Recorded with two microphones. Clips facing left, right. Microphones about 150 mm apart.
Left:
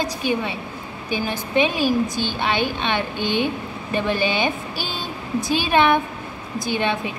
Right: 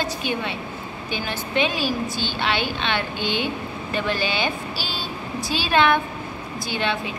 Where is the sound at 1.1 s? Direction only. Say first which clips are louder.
Left 4 dB; 15° left (ahead or behind).